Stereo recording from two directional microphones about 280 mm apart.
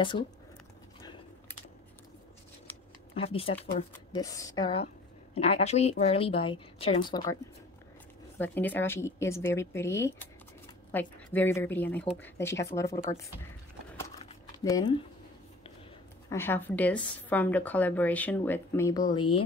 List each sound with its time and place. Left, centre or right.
3.2 s a woman's voice: centre
8.4 s a woman's voice: centre
14.6 s a woman's voice: centre
16.3 s a woman's voice: centre